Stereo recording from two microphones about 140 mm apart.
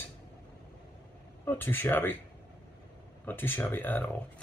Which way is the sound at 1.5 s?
15° left (ahead or behind).